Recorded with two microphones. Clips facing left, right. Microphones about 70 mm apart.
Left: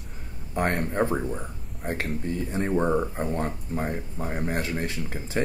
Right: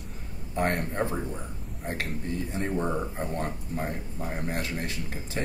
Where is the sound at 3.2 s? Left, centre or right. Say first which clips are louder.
Left 3 dB; left.